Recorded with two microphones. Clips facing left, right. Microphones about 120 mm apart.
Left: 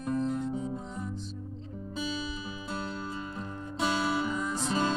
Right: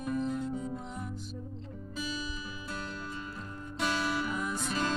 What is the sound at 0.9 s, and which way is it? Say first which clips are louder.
Music: left 2 dB; 10° right (ahead or behind).